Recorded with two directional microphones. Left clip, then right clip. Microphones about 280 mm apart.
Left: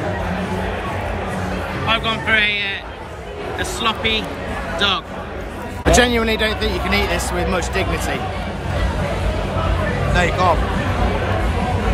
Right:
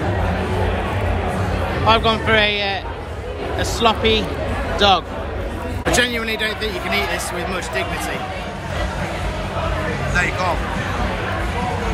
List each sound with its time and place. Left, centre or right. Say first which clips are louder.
1.9 s speech: right 3 dB; centre
3.8 s speech: right 3 dB; centre
5.9 s speech: left 4 dB; centre
10.1 s speech: left 3 dB; left